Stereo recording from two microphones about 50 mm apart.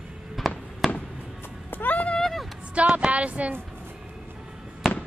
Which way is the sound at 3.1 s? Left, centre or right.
Right.